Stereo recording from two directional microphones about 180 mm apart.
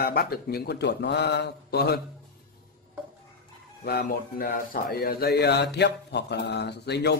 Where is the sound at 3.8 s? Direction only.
60° left (ahead or behind).